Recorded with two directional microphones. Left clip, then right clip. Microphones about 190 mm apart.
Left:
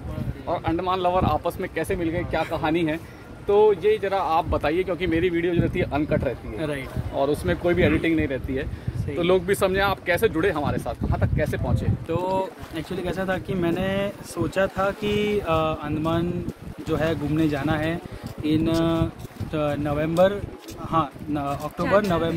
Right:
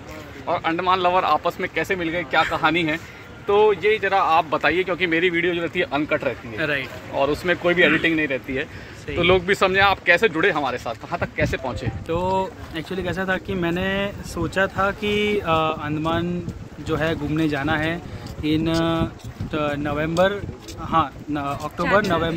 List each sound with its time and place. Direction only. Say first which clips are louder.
0.5 s speech: right 4 dB; 10° right (ahead or behind)
6.6 s speech: right 7 dB; 15° left (ahead or behind)
7.2 s speech: right 3 dB; 5° right (ahead or behind)
9.2 s speech: right 3 dB; 20° right (ahead or behind)
12.1 s speech: right 3 dB; centre (ahead or behind)